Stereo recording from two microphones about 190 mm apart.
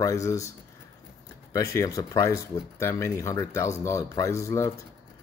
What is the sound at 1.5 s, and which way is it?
Speech, 15° left (ahead or behind).